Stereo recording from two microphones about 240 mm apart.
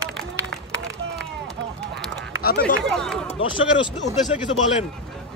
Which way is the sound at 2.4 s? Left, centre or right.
Left.